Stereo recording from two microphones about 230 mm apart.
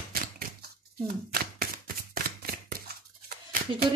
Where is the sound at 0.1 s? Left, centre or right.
Right.